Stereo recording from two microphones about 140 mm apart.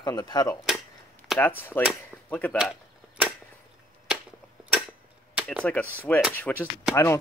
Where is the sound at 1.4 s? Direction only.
15° left (ahead or behind).